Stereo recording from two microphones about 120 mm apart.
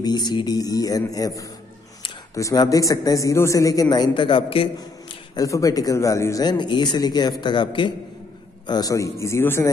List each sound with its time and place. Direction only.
0.0 s a man's voice: 35° left (ahead or behind)
5.3 s a man's voice: 30° left (ahead or behind)